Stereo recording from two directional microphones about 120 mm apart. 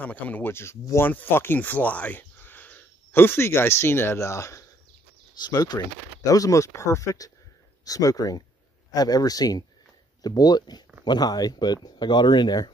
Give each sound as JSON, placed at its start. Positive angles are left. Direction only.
{"t": 0.0, "sound": "speech", "side_deg": 15}